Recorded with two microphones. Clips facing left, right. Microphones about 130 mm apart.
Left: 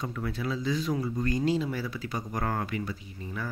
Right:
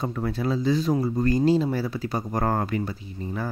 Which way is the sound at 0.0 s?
35° right (ahead or behind).